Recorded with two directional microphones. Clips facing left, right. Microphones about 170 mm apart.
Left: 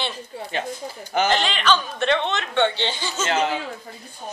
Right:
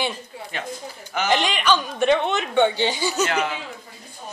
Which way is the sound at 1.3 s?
10° right (ahead or behind).